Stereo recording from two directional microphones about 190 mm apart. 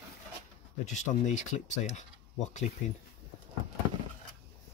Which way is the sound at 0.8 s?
40° left (ahead or behind).